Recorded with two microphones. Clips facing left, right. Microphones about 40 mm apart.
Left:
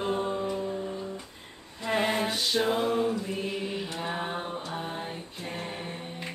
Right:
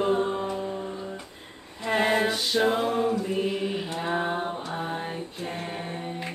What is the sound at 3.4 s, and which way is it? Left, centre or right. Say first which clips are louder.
Mantra: right 4 dB; centre.